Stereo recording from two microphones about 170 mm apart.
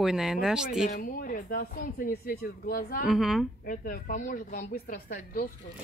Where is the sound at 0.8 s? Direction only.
55° left (ahead or behind).